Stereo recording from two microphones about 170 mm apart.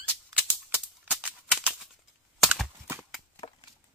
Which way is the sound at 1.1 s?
10° right (ahead or behind).